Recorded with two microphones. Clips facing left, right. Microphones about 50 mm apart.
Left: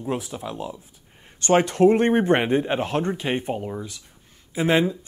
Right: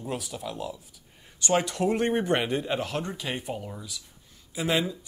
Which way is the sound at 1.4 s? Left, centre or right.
Left.